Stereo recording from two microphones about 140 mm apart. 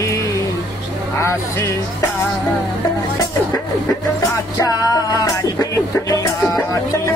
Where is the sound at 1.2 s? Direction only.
20° left (ahead or behind).